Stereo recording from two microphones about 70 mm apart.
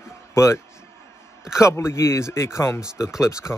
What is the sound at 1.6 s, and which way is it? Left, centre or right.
Speech, left.